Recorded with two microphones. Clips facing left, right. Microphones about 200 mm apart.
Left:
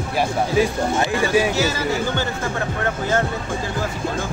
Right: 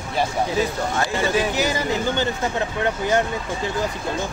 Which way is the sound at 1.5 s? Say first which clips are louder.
Left 1 dB; 15° right (ahead or behind).